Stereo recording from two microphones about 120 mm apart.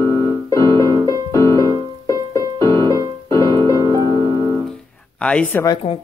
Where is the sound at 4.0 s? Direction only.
35° right (ahead or behind).